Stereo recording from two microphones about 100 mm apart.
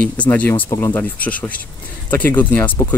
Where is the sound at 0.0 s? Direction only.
15° left (ahead or behind).